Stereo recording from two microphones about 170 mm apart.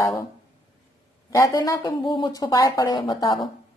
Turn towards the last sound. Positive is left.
turn(degrees=25)  # may be behind; listen again after turning